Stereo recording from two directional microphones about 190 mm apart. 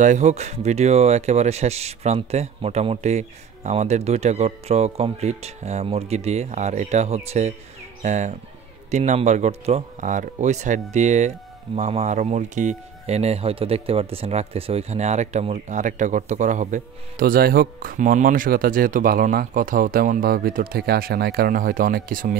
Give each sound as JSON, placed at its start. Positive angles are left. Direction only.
{"t": 0.0, "sound": "speech", "side_deg": -40}